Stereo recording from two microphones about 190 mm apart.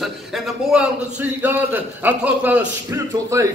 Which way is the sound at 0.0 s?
Centre (ahead or behind).